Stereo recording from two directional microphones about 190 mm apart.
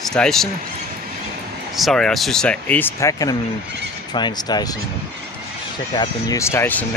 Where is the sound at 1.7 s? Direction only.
Centre (ahead or behind); by 4.8 s 20° left (ahead or behind).